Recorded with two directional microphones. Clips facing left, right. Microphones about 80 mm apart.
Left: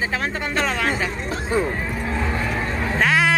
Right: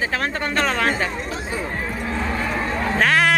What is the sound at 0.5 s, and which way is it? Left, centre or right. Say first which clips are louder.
Chatter: right 2 dB; centre.